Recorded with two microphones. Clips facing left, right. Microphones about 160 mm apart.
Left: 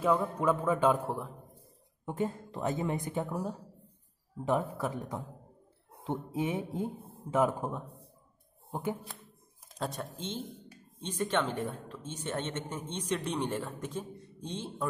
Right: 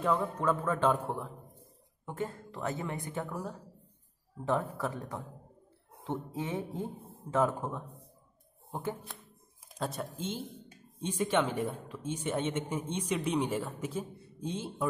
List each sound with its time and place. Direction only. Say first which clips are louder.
0.0 s speech: left 2 dB; 10° left (ahead or behind)
2.0 s speech: left 4 dB; 15° left (ahead or behind)
9.8 s speech: right 1 dB; 5° right (ahead or behind)